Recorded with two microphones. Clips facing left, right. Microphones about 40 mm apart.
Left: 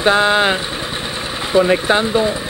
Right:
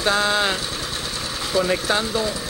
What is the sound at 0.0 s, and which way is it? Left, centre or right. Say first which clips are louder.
Speech: left 7 dB; left.